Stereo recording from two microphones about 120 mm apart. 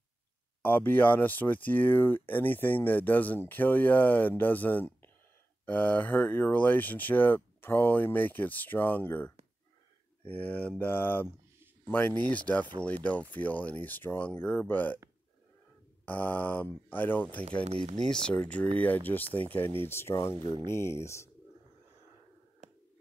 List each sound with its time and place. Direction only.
0.6 s speech: 15° left (ahead or behind)
16.1 s speech: 15° left (ahead or behind)